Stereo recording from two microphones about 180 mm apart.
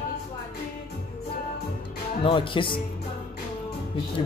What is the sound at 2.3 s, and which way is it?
Speech, 30° left (ahead or behind).